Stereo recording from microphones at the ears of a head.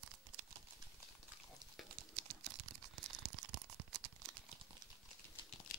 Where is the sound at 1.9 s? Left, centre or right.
Right.